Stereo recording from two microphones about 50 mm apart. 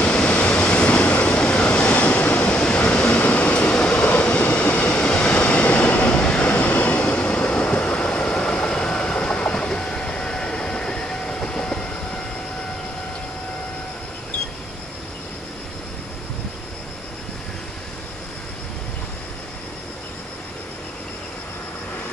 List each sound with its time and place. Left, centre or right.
0.0 s vehicle: left
2.9 s train: left